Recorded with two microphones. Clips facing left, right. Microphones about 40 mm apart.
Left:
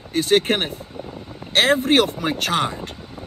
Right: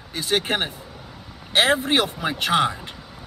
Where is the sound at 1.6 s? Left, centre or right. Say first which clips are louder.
Left 2 dB; right.